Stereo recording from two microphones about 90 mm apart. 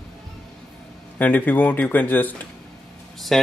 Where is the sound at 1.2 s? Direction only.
20° left (ahead or behind).